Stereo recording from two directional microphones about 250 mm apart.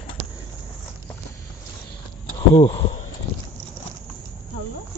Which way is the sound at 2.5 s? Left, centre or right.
Left.